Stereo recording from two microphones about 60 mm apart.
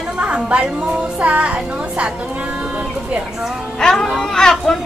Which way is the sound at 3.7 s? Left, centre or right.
Centre.